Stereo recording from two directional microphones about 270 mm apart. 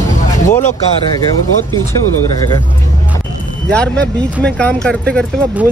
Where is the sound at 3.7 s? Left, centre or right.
Centre.